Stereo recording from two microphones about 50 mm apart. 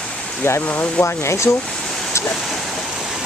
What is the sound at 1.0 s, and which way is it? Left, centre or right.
Speech, left.